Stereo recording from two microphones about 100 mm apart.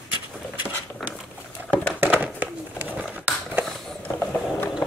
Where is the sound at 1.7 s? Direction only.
15° right (ahead or behind).